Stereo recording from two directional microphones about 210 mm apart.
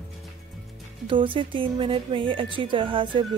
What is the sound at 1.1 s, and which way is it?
Speech, 25° right (ahead or behind).